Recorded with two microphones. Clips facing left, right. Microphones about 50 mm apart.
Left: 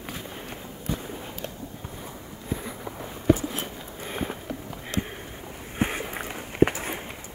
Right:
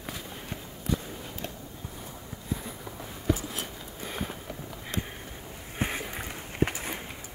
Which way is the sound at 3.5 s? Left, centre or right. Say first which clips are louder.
Left 4 dB; left.